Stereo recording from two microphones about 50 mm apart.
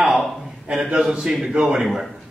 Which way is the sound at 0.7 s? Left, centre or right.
Centre.